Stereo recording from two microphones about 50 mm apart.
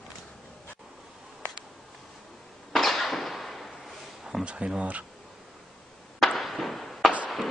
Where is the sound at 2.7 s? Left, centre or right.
Centre.